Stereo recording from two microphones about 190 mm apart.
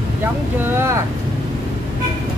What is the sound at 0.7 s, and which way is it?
Speech, 15° right (ahead or behind).